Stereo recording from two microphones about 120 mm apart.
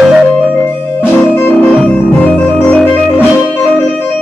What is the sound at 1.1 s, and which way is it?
Music, 15° left (ahead or behind).